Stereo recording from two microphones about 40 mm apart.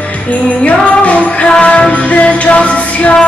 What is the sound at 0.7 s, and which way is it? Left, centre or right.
Music, left.